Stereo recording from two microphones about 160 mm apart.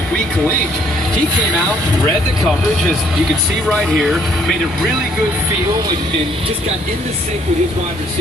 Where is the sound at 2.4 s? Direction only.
Centre (ahead or behind).